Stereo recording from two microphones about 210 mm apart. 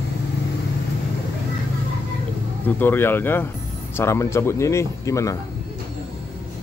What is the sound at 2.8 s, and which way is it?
A man's voice, 10° left (ahead or behind).